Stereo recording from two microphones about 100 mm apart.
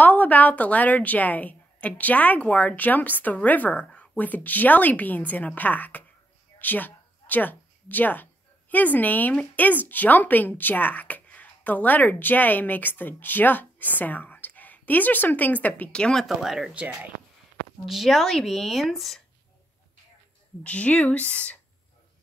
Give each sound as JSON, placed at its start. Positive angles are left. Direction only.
{"t": 0.0, "sound": "a woman's voice", "side_deg": 15}
{"t": 17.8, "sound": "speech", "side_deg": 0}
{"t": 20.6, "sound": "a woman's voice", "side_deg": 15}